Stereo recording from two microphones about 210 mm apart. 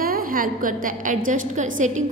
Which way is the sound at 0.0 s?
45° right (ahead or behind).